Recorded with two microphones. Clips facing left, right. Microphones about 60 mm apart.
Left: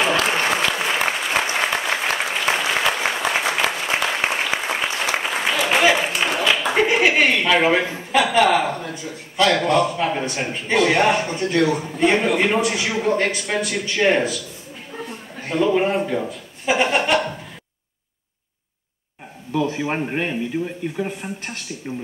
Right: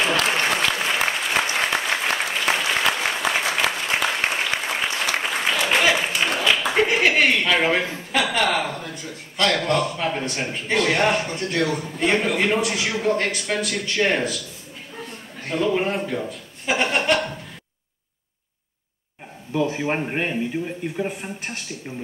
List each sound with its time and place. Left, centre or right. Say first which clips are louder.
0.0 s applause: left 2 dB; centre
8.1 s a man's voice: left 5 dB; centre
15.0 s a sound: left 4 dB; centre
19.5 s a man's voice: left 1 dB; centre
21.2 s a man's voice: left 2 dB; centre